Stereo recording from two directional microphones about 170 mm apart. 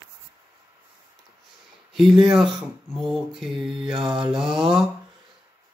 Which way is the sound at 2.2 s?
5° right (ahead or behind).